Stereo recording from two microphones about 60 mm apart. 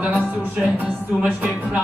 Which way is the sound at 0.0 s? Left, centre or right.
Centre.